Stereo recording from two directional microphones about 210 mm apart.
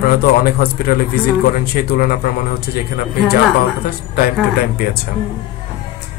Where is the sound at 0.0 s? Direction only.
45° left (ahead or behind).